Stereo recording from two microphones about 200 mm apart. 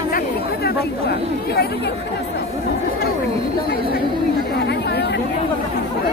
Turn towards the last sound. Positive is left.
turn(degrees=55)  # may be behind; listen again after turning